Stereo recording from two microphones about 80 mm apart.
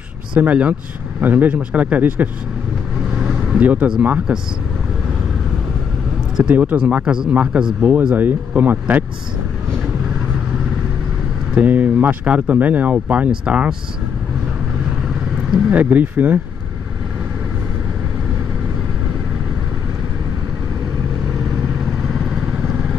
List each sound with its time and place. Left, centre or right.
0.4 s speech: centre
3.5 s speech: centre
6.5 s speech: centre
11.5 s speech: centre
15.5 s speech: centre